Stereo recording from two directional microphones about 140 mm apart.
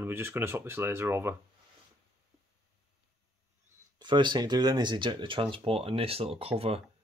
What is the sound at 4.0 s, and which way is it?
Speech, 35° right (ahead or behind).